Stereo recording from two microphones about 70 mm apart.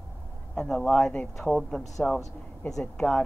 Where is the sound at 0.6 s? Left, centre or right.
Centre.